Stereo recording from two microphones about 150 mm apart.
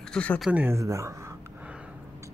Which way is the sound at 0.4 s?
10° right (ahead or behind).